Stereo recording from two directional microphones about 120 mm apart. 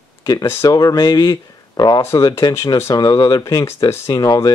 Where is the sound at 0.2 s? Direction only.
35° left (ahead or behind).